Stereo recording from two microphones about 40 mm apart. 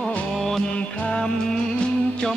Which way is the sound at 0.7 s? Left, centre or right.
Left.